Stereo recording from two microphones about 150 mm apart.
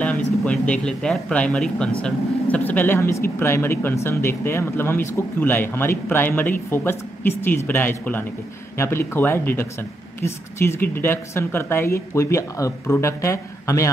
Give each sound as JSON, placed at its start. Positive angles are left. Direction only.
{"t": 0.4, "sound": "speech", "side_deg": 5}